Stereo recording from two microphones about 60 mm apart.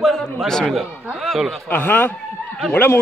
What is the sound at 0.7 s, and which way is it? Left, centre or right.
Speech, centre.